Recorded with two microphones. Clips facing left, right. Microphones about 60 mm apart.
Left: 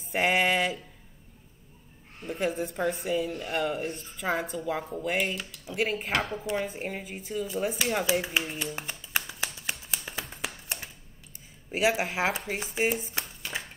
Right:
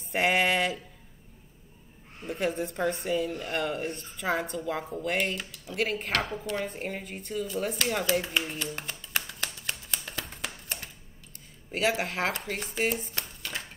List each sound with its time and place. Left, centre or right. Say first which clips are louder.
0.0 s a woman's voice: even; centre
2.2 s a woman's voice: even; centre
6.3 s speech: left 2 dB; centre
6.6 s speech: even; centre
10.2 s a sound: left 1 dB; centre
11.7 s speech: left 2 dB; centre